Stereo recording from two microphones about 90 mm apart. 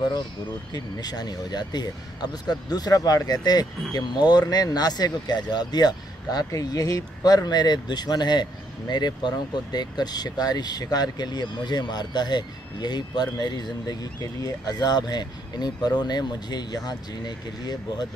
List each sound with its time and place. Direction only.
0.7 s speech: 50° left (ahead or behind)